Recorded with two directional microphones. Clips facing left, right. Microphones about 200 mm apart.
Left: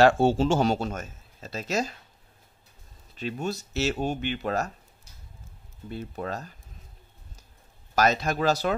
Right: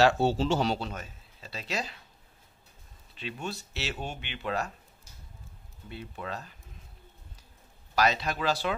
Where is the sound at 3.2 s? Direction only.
40° left (ahead or behind).